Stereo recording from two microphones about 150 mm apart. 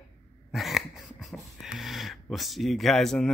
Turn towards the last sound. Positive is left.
turn(degrees=0)  # may be behind; listen again after turning